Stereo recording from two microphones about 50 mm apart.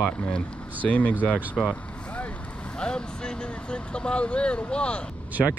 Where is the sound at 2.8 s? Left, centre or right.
Centre.